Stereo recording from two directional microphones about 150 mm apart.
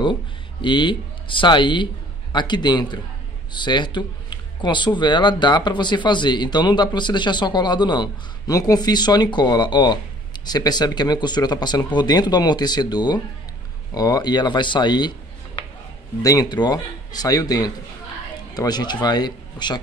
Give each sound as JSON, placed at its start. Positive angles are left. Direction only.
{"t": 0.0, "sound": "speech", "side_deg": 30}
{"t": 16.2, "sound": "speech", "side_deg": 25}